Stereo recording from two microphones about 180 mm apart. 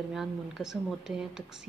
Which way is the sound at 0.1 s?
Centre (ahead or behind).